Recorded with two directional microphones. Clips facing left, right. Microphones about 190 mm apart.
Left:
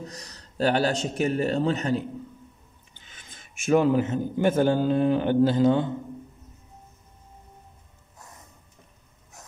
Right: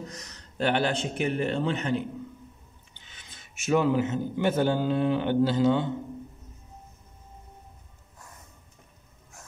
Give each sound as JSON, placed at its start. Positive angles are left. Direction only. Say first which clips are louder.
{"t": 0.1, "sound": "a man's voice", "louder": "left 1 dB", "side_deg": 35}